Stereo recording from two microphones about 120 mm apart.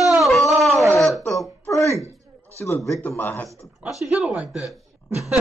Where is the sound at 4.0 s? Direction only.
5° right (ahead or behind).